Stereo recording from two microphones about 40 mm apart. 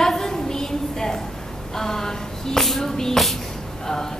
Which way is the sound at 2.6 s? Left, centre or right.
Centre.